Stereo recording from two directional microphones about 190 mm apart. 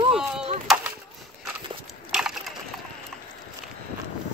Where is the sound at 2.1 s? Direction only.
5° right (ahead or behind).